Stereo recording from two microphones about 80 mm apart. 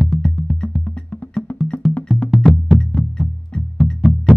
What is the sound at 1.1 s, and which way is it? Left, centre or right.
Music, centre.